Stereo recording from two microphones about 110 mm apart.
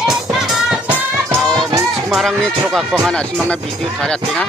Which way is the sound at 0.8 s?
20° right (ahead or behind).